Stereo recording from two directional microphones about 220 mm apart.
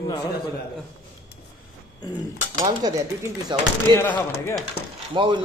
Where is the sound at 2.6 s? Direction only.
15° right (ahead or behind).